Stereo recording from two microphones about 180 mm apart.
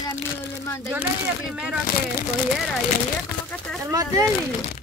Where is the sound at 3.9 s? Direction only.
20° right (ahead or behind).